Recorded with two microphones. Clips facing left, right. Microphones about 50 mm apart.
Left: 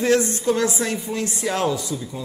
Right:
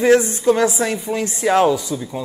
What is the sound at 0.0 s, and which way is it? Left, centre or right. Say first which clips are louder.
Speech: right 5 dB; centre.